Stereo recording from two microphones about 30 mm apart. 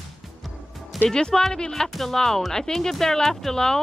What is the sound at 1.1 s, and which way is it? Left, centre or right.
Speech, left.